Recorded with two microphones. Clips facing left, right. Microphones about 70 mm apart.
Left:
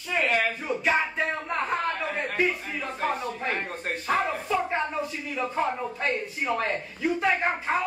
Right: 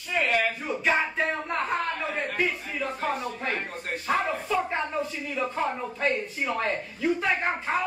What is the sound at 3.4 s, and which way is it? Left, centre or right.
Speech, left.